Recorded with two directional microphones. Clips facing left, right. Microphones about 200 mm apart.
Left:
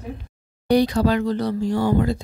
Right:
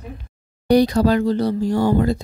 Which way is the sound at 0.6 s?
40° right (ahead or behind).